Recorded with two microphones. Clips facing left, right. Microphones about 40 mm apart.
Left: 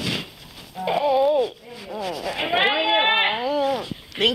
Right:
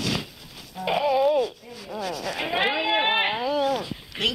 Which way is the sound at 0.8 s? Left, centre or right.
Centre.